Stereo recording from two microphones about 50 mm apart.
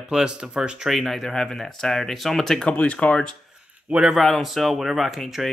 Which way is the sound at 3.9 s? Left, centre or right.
Right.